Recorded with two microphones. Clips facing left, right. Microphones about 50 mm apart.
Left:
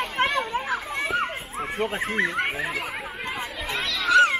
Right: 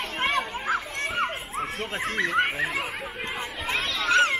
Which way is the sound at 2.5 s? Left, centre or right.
Centre.